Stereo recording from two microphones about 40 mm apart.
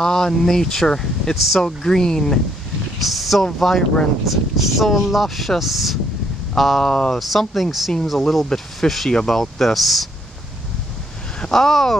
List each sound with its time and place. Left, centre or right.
0.0 s speech: centre
1.3 s speech: centre
1.8 s speech: centre
3.0 s speech: centre
6.8 s speech: centre
7.1 s speech: centre
11.5 s speech: centre